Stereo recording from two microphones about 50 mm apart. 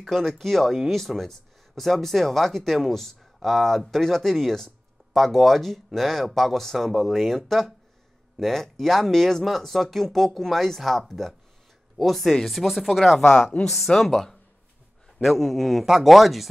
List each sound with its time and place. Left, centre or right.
0.0 s speech: centre
13.3 s speech: left
13.7 s speech: centre